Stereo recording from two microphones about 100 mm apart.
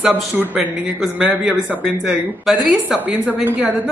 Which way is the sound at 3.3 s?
15° right (ahead or behind).